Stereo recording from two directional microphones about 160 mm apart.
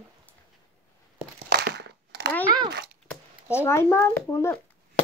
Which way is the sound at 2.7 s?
90° right.